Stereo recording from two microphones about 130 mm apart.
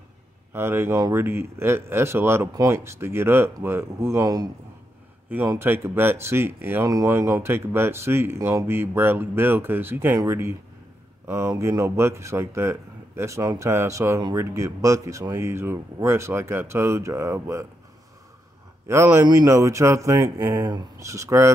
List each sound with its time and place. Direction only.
0.5 s speech: 20° right (ahead or behind)
5.5 s speech: 20° right (ahead or behind)
18.9 s speech: 20° right (ahead or behind)